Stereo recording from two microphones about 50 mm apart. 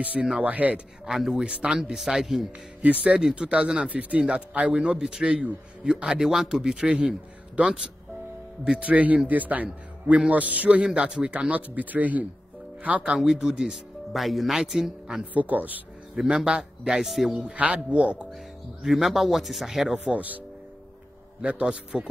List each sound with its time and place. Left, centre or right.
0.0 s a man's voice: right
1.0 s a man's voice: centre
2.8 s a man's voice: right
8.8 s a man's voice: right
13.2 s a man's voice: centre
14.1 s a man's voice: centre
15.3 s speech: right
16.3 s a man's voice: centre
17.5 s a man's voice: right
18.8 s speech: centre
20.0 s a man's voice: right